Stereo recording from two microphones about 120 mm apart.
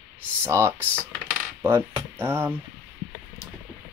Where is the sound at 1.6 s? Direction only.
20° right (ahead or behind).